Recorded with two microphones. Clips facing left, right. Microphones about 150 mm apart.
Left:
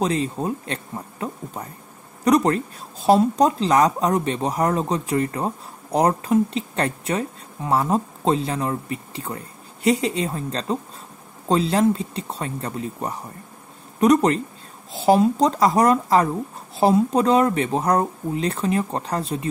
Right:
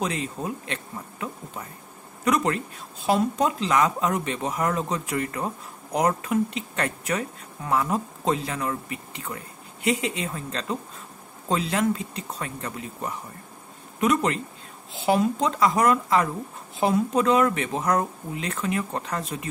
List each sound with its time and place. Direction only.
0.0 s speech: 35° left (ahead or behind)